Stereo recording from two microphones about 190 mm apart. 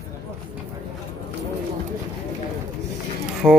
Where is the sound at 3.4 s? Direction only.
20° right (ahead or behind).